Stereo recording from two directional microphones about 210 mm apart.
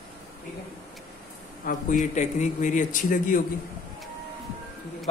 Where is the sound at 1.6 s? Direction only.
40° left (ahead or behind).